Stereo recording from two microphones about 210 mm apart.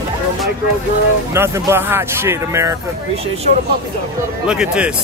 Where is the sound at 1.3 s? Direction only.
10° right (ahead or behind).